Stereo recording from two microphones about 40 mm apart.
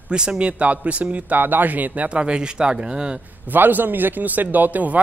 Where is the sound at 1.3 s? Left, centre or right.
Right.